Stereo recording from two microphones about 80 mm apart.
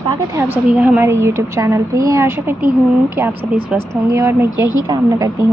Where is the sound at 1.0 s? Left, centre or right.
Right.